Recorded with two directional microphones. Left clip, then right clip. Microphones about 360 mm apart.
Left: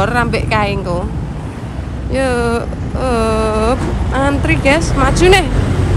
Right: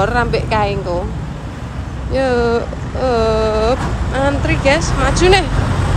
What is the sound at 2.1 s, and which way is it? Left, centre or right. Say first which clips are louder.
Vehicle: right 1 dB; centre.